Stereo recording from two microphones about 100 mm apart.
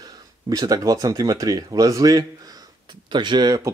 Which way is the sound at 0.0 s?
40° right (ahead or behind).